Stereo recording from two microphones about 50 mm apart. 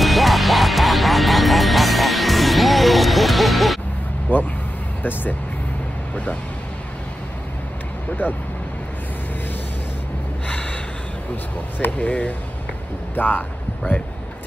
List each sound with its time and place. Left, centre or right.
0.0 s music: centre
4.3 s vehicle: left
8.2 s speech: left
11.8 s speech: left